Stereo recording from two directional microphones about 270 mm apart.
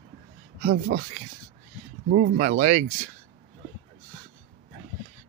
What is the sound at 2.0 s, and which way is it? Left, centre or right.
Speech, right.